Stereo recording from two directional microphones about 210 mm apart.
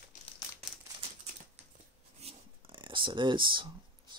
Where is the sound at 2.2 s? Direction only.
25° right (ahead or behind).